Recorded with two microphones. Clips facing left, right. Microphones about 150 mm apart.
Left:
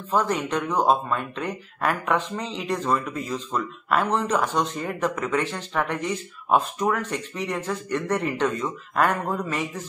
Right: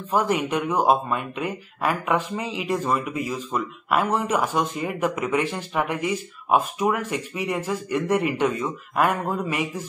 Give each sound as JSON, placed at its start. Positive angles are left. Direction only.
{"t": 0.1, "sound": "speech", "side_deg": -10}